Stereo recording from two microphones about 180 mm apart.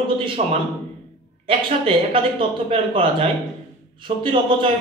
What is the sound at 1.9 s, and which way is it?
A man's voice, 30° right (ahead or behind).